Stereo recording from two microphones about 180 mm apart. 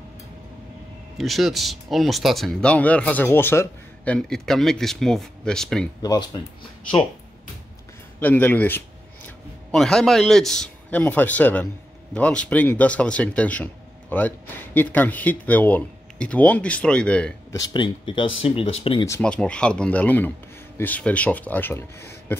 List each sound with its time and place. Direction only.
1.1 s speech: centre (ahead or behind)
6.0 s speech: 25° left (ahead or behind)
8.2 s speech: 10° left (ahead or behind)
17.5 s speech: 25° left (ahead or behind)
19.0 s speech: 10° left (ahead or behind)